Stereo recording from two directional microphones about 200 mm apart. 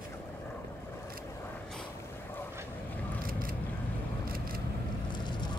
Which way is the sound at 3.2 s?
45° right (ahead or behind).